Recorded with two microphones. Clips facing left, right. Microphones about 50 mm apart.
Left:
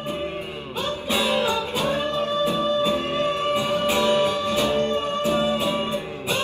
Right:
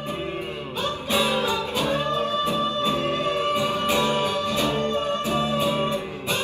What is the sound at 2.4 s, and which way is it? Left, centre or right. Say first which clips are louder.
Music: left 1 dB; right.